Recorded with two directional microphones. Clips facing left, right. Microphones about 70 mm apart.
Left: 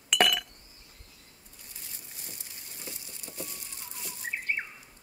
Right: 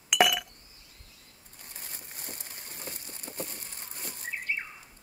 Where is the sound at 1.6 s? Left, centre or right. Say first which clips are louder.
Right 4 dB; right.